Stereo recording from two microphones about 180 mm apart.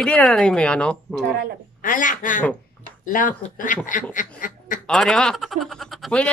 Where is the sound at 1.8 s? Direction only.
45° left (ahead or behind).